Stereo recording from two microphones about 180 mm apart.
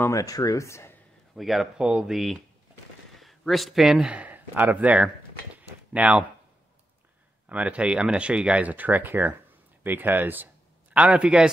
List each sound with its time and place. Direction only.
0.0 s speech: 20° left (ahead or behind)
1.3 s speech: centre (ahead or behind)
3.2 s a sound: centre (ahead or behind)
7.4 s a man's voice: 5° right (ahead or behind)